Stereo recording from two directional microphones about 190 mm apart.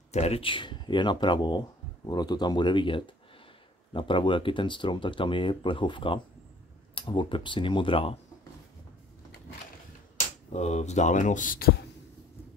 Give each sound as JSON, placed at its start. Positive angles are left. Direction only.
{"t": 0.1, "sound": "speech", "side_deg": 35}
{"t": 10.5, "sound": "speech", "side_deg": 35}